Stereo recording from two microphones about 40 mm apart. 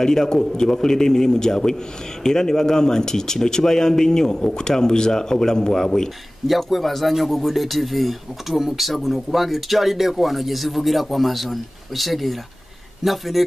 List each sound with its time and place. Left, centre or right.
0.0 s speech: centre
6.4 s speech: centre